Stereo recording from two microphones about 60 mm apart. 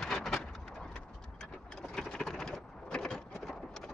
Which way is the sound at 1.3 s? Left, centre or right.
Centre.